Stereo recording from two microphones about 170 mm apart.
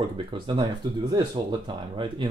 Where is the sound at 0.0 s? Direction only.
30° right (ahead or behind).